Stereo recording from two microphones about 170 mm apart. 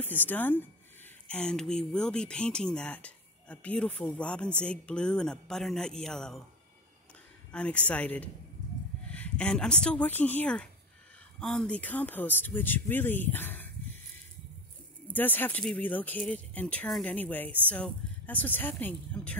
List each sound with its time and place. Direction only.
0.0 s speech: 10° left (ahead or behind)
7.5 s a woman's voice: 5° left (ahead or behind)
15.0 s speech: 10° left (ahead or behind)